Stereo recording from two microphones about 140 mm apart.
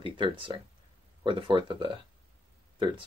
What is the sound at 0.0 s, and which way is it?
Speech, 40° right (ahead or behind).